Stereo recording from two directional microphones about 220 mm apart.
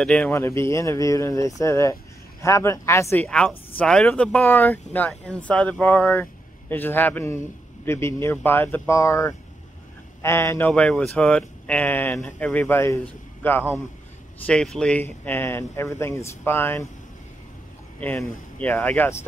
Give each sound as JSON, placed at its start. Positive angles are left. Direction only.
{"t": 0.0, "sound": "speech", "side_deg": 5}
{"t": 18.0, "sound": "speech", "side_deg": 5}